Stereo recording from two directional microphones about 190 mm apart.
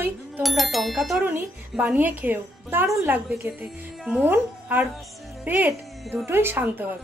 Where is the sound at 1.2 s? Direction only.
15° right (ahead or behind).